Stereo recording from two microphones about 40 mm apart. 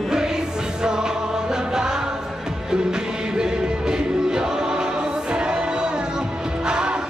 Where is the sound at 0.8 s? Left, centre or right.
Centre.